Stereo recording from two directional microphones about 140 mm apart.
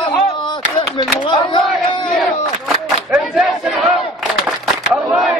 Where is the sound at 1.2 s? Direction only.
35° left (ahead or behind).